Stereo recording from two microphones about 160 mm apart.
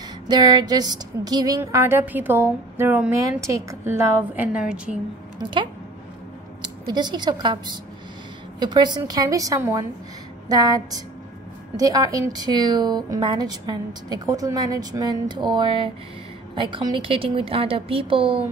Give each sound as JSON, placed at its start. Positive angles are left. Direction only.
{"t": 0.3, "sound": "speech", "side_deg": -25}
{"t": 5.4, "sound": "a woman's voice", "side_deg": -30}